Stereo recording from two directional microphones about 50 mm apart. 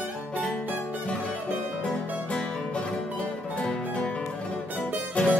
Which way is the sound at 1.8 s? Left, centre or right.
Left.